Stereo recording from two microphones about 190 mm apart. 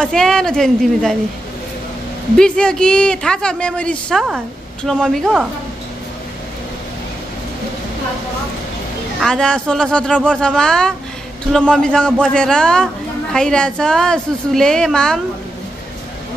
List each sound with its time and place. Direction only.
0.0 s speech: 5° left (ahead or behind)
2.3 s speech: 5° left (ahead or behind)
9.2 s speech: 5° left (ahead or behind)